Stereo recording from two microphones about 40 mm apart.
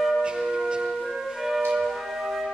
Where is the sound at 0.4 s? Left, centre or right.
Centre.